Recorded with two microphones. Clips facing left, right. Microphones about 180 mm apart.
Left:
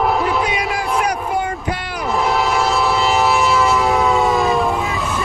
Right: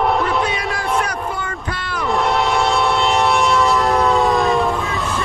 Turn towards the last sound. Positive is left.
turn(degrees=0)  # may be behind; listen again after turning